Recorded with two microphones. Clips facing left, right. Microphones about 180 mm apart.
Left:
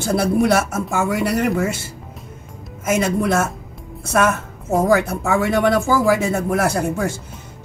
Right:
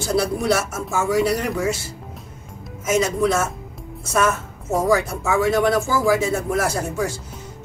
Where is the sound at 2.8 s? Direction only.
60° left (ahead or behind).